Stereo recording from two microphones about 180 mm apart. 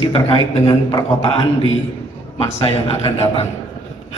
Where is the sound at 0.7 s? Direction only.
20° left (ahead or behind).